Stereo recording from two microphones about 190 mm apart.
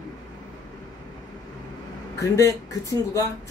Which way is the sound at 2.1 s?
15° left (ahead or behind).